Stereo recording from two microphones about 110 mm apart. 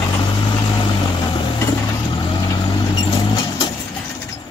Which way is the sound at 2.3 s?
45° left (ahead or behind).